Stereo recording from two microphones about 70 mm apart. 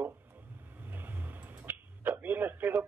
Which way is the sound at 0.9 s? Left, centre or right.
Right.